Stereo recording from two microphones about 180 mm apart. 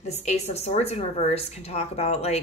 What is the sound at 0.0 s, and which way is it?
Speech, 40° left (ahead or behind).